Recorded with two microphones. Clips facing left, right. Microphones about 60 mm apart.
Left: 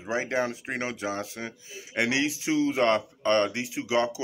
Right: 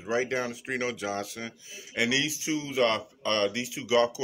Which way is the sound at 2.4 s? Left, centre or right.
Left.